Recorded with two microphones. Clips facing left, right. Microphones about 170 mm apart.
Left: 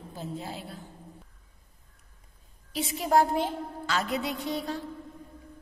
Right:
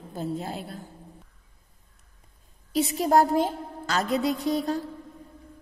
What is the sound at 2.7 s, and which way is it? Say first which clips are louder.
A woman's voice: right 4 dB; 40° right (ahead or behind).